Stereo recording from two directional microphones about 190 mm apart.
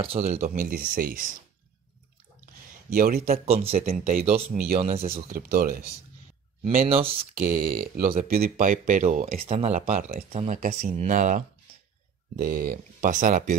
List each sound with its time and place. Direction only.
0.0 s speech: 30° right (ahead or behind)
2.9 s speech: 50° right (ahead or behind)
3.4 s speech: 30° right (ahead or behind)
5.0 s speech: 50° right (ahead or behind)
6.9 s speech: 30° right (ahead or behind)
7.3 s speech: 50° right (ahead or behind)
9.5 s speech: 35° right (ahead or behind)